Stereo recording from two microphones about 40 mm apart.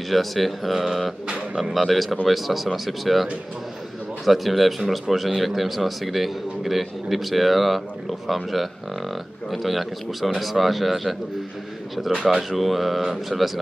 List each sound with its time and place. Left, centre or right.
0.1 s a man's voice: centre
1.2 s speech: right
1.6 s a man's voice: centre
12.4 s a man's voice: centre